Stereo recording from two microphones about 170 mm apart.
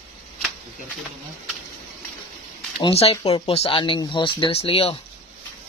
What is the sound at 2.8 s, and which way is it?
Speech, 35° left (ahead or behind).